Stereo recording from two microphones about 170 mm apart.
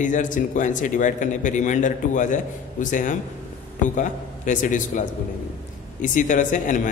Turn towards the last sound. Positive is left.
turn(degrees=50)  # may be behind; listen again after turning